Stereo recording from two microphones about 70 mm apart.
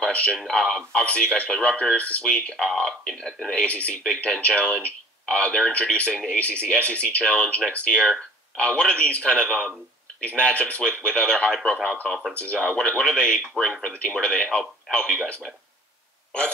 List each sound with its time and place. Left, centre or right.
0.0 s a man's voice: centre
13.7 s speech: centre
14.2 s speech: centre